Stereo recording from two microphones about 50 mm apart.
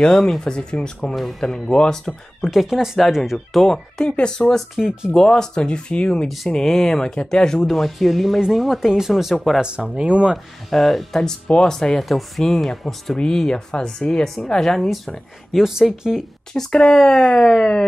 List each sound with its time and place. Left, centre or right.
0.0 s speech: centre
2.5 s speech: centre
3.6 s speech: centre
4.7 s speech: centre
5.1 s speech: centre
6.2 s speech: centre
7.2 s speech: centre
9.6 s speech: centre
10.3 s speech: centre
15.5 s speech: centre
16.7 s speech: centre